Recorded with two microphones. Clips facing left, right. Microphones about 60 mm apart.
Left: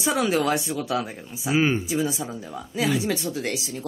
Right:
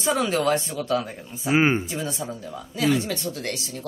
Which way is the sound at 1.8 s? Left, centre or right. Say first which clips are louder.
Left 4 dB; centre.